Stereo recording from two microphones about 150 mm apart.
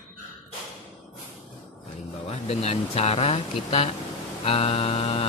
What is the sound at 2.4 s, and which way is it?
Speech, 40° left (ahead or behind).